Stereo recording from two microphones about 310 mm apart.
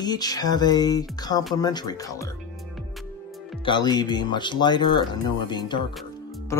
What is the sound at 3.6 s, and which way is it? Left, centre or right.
Speech, centre.